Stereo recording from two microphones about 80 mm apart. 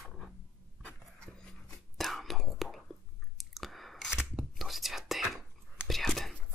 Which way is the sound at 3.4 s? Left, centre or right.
Centre.